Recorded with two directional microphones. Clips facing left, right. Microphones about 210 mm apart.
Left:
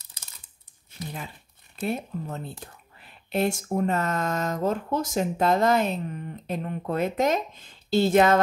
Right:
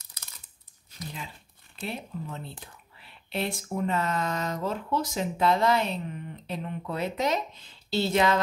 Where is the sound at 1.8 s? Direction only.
50° left (ahead or behind).